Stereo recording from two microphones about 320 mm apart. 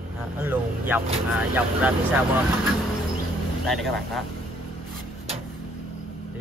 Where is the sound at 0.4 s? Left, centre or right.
Centre.